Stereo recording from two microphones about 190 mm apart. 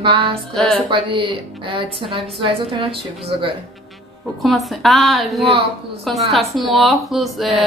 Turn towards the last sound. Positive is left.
turn(degrees=0)  # may be behind; listen again after turning